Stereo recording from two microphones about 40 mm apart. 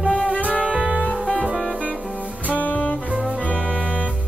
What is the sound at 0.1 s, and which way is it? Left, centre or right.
Music, left.